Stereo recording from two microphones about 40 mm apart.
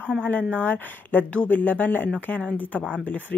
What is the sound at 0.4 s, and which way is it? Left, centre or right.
A woman's voice, left.